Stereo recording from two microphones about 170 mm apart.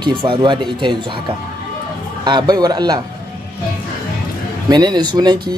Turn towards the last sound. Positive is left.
turn(degrees=-25)  # may be behind; listen again after turning